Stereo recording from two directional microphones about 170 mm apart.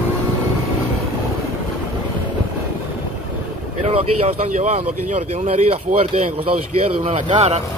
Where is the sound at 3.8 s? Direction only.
40° right (ahead or behind).